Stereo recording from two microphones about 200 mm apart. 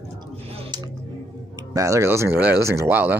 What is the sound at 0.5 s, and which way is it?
Music, 20° right (ahead or behind).